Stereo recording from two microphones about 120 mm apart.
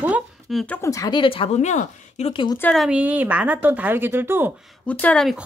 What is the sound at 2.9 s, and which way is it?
Speech, 10° right (ahead or behind).